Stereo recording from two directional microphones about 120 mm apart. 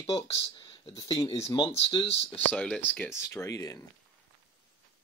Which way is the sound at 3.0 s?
25° left (ahead or behind).